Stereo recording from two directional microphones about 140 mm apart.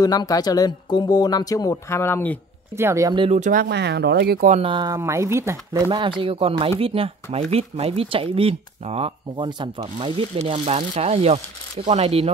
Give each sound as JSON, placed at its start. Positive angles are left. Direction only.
{"t": 0.0, "sound": "speech", "side_deg": 25}
{"t": 2.8, "sound": "speech", "side_deg": -20}
{"t": 3.2, "sound": "speech", "side_deg": -55}
{"t": 4.3, "sound": "speech", "side_deg": -90}
{"t": 4.6, "sound": "speech", "side_deg": -35}
{"t": 4.9, "sound": "speech", "side_deg": -20}
{"t": 5.9, "sound": "speech", "side_deg": -35}
{"t": 10.6, "sound": "speech", "side_deg": -55}